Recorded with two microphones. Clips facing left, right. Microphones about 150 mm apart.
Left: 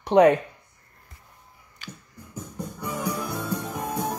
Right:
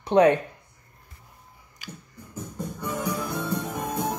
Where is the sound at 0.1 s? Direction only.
15° left (ahead or behind).